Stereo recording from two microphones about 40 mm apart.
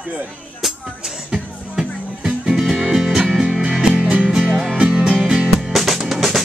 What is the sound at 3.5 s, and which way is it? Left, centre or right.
Music, right.